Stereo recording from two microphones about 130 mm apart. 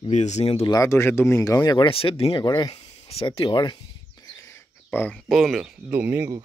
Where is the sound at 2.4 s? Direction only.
30° left (ahead or behind).